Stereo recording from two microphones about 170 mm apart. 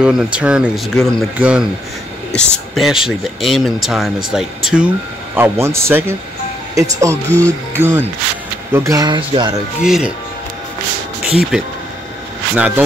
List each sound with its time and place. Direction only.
0.0 s speech: 5° right (ahead or behind)
5.3 s speech: 15° right (ahead or behind)
9.8 s speech: 5° right (ahead or behind)
11.2 s speech: 5° right (ahead or behind)